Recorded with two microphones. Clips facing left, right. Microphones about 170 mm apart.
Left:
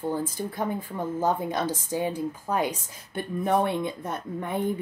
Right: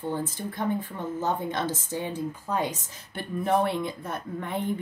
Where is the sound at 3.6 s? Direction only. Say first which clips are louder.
Left 1 dB; 20° left (ahead or behind).